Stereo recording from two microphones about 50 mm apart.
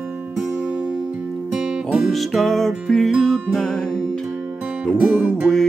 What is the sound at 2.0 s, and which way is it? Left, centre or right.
Music, centre.